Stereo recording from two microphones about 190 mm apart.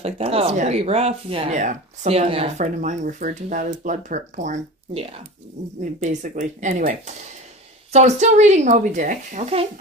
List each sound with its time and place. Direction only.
0.0 s speech: 30° right (ahead or behind)